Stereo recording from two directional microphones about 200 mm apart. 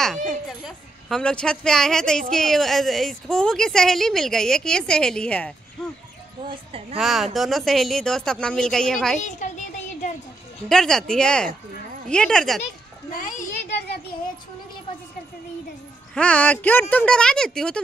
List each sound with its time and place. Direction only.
0.7 s a woman's voice: centre (ahead or behind)
6.5 s speech: 30° right (ahead or behind)
7.0 s a woman's voice: centre (ahead or behind)
9.2 s a sound: 35° left (ahead or behind)
10.7 s a woman's voice: centre (ahead or behind)
13.2 s a sound: 40° left (ahead or behind)
16.2 s a woman's voice: 5° left (ahead or behind)